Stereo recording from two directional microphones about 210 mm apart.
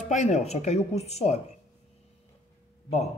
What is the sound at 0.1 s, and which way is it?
Speech, 35° left (ahead or behind).